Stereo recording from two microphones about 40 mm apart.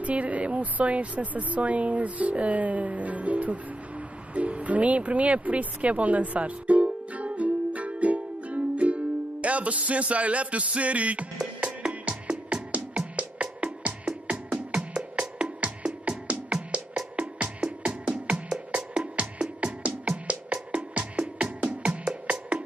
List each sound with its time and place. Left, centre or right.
0.0 s speech: right
4.3 s music: right
14.7 s music: right
18.9 s music: right